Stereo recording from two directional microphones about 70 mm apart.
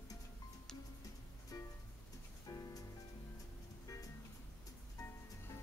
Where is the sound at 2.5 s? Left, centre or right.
Left.